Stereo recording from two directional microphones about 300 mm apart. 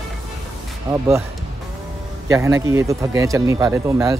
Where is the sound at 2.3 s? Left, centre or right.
Centre.